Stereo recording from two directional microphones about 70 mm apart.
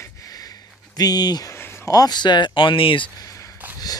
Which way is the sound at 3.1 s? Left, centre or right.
Left.